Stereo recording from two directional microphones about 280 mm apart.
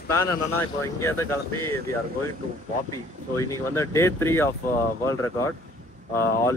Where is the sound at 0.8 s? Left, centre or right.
Centre.